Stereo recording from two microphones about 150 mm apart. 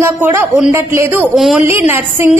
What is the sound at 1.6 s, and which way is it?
Speech, 15° right (ahead or behind).